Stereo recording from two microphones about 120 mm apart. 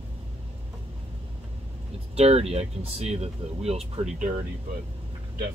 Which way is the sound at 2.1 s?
60° right (ahead or behind).